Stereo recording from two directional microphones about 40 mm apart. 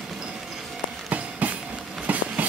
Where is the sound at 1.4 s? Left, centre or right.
Right.